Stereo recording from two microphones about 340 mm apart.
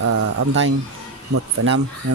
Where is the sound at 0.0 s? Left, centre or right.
Right.